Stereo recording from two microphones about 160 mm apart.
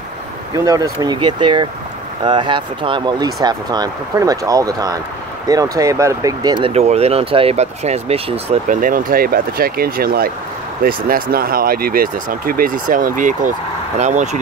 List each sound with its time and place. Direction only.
0.7 s speech: 25° right (ahead or behind)
6.7 s speech: 40° right (ahead or behind)
8.6 s speech: 60° right (ahead or behind)